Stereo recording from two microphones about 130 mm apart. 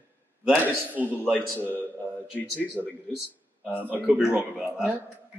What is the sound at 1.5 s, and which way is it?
Speech, 15° left (ahead or behind).